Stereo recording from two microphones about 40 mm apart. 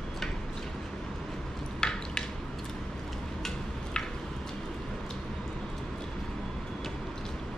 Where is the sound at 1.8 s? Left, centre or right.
Centre.